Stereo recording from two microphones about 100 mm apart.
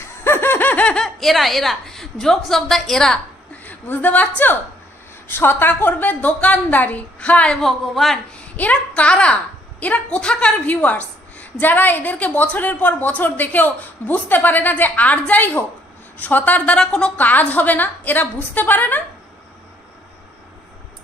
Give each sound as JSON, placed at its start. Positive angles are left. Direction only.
{"t": 0.2, "sound": "snicker", "side_deg": 20}
{"t": 1.0, "sound": "a woman's voice", "side_deg": 0}
{"t": 3.6, "sound": "a woman's voice", "side_deg": 20}
{"t": 5.3, "sound": "a woman's voice", "side_deg": 20}
{"t": 7.6, "sound": "a woman's voice", "side_deg": 0}
{"t": 8.5, "sound": "a woman's voice", "side_deg": 15}